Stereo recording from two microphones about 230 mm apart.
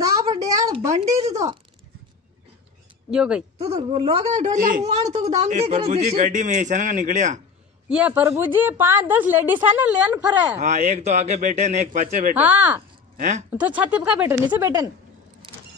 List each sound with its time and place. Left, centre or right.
0.0 s a sound: centre
3.1 s speech: centre
3.5 s speech: right
7.9 s a woman's voice: centre
10.6 s a man's voice: right
12.4 s a woman's voice: centre